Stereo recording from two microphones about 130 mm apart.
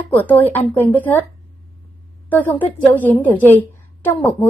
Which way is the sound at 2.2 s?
15° left (ahead or behind).